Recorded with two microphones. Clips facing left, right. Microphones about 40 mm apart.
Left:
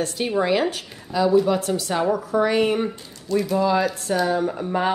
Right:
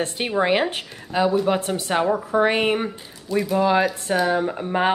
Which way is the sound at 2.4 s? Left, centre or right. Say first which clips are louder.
Even; right.